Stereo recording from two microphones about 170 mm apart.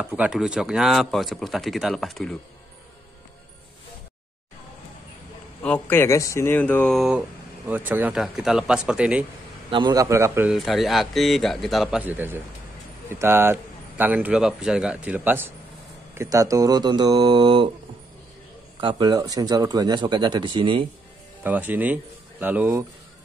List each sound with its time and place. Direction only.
0.0 s speech: 5° right (ahead or behind)
5.6 s speech: 10° left (ahead or behind); by 9.2 s 5° right (ahead or behind)
9.7 s a man's voice: 25° right (ahead or behind)
10.5 s a man's voice: centre (ahead or behind); by 17.6 s 25° right (ahead or behind)
18.8 s speech: 30° right (ahead or behind)
21.4 s speech: 10° right (ahead or behind)